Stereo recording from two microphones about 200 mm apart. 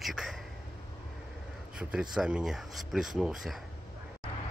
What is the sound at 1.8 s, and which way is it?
Speech, 5° right (ahead or behind).